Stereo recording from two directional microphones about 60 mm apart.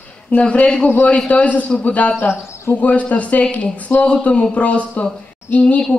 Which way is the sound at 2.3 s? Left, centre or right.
Left.